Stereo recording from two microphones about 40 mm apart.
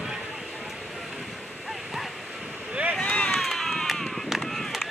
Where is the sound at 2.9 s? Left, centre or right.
Left.